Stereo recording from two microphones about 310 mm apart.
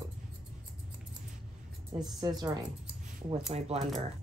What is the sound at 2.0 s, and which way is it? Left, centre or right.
A woman's voice, centre.